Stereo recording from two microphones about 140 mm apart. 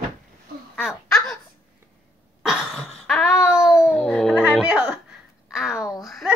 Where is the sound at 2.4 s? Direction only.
Centre (ahead or behind).